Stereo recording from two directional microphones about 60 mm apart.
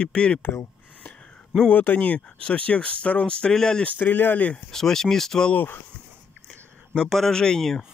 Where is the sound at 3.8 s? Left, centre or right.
Left.